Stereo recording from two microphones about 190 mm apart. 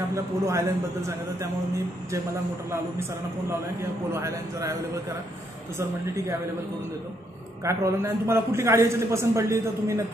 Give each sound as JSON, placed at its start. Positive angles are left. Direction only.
{"t": 0.1, "sound": "a man's voice", "side_deg": -15}
{"t": 2.7, "sound": "a man's voice", "side_deg": -15}
{"t": 5.8, "sound": "a man's voice", "side_deg": -15}
{"t": 7.6, "sound": "a man's voice", "side_deg": -15}